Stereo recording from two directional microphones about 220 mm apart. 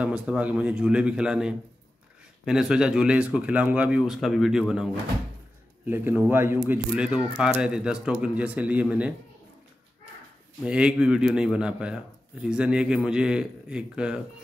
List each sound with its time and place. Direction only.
0.0 s speech: 5° right (ahead or behind)
5.9 s a man's voice: 10° right (ahead or behind)
10.6 s speech: 5° right (ahead or behind)